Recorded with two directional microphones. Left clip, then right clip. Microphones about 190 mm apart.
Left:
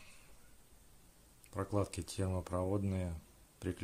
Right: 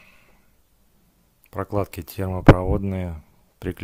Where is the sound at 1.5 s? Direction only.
40° right (ahead or behind).